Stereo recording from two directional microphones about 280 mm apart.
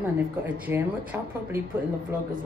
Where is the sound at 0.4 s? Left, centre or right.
Centre.